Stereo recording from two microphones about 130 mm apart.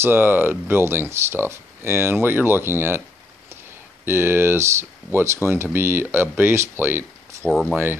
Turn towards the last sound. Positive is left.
turn(degrees=-15)  # may be behind; listen again after turning